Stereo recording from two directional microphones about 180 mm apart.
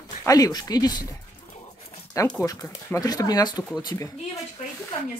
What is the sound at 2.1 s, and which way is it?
Speech, 15° left (ahead or behind).